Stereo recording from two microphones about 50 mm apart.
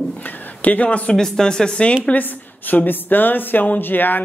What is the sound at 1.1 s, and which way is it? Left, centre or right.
Speech, centre.